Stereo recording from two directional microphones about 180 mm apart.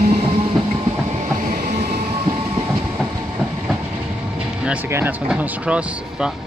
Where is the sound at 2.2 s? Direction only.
25° right (ahead or behind).